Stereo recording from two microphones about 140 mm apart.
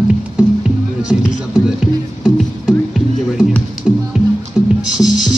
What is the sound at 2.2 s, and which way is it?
Music, centre (ahead or behind).